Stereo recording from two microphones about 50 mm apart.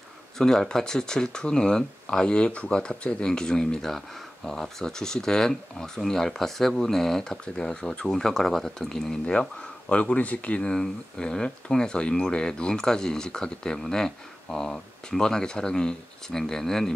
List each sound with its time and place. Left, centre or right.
0.4 s speech: centre
9.2 s speech: left